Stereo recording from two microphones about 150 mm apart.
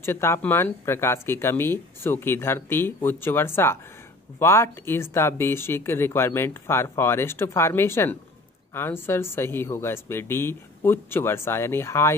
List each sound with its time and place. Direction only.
0.0 s speech: 15° left (ahead or behind)